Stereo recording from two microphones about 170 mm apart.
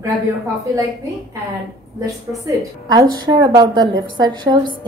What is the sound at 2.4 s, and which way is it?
A woman's voice, 20° right (ahead or behind).